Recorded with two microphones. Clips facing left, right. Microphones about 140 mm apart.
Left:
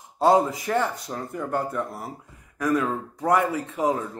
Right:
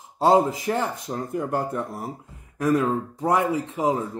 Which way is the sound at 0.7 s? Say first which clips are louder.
Even; 30° right (ahead or behind).